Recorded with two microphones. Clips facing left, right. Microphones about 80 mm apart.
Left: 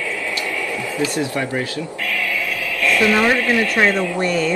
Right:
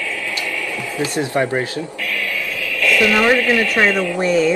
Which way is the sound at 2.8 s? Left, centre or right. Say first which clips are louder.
Right 1 dB; left.